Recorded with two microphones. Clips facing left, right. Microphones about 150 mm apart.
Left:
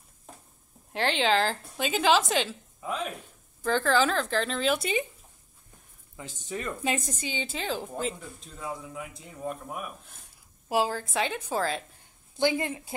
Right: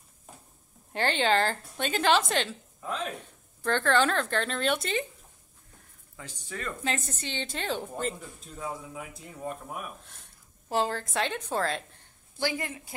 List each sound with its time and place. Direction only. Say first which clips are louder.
0.9 s a woman's voice: even; centre (ahead or behind)
6.4 s a woman's voice: left 3 dB; 20° left (ahead or behind); by 11.8 s centre (ahead or behind)
12.4 s a woman's voice: left 5 dB; 20° left (ahead or behind)